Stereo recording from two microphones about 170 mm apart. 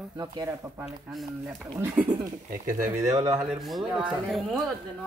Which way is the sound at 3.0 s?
15° right (ahead or behind).